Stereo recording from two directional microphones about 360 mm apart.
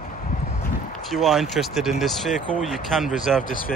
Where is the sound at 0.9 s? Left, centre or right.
Centre.